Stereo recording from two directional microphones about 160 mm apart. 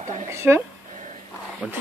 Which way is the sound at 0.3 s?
15° right (ahead or behind).